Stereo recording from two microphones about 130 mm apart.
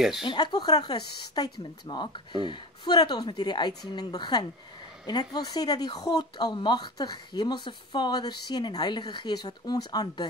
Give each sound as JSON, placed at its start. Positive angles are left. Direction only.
{"t": 0.2, "sound": "speech", "side_deg": 35}